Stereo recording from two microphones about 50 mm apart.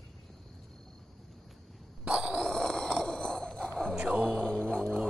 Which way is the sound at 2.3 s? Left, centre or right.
Centre.